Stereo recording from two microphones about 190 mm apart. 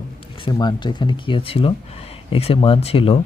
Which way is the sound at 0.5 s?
25° left (ahead or behind).